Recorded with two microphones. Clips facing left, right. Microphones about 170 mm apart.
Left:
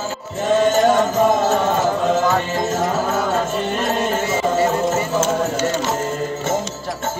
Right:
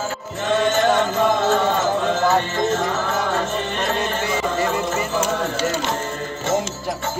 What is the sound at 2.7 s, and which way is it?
Music, 45° left (ahead or behind).